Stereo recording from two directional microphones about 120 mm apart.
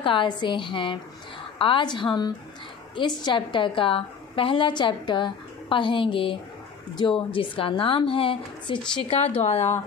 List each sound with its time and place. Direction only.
0.0 s a woman's voice: 45° left (ahead or behind); by 9.8 s 65° left (ahead or behind)